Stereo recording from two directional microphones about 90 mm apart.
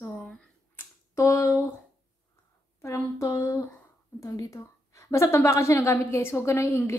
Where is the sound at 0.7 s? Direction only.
35° left (ahead or behind).